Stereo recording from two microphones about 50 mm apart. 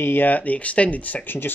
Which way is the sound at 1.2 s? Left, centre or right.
Left.